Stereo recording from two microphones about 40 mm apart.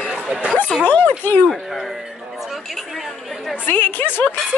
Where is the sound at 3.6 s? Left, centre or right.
Left.